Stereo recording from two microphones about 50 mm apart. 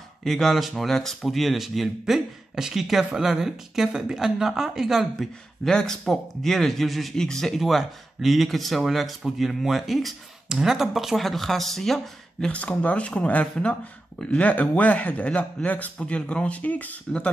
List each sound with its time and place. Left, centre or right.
0.2 s speech: centre
5.7 s a man's voice: centre
7.6 s speech: centre
12.4 s a man's voice: left